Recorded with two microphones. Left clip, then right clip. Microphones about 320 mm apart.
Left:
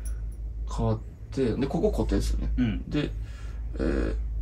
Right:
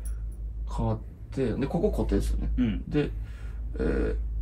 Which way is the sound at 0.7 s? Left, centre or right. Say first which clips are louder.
Left 2 dB; centre.